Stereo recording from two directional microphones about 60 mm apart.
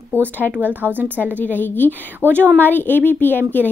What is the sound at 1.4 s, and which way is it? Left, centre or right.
A woman's voice, left.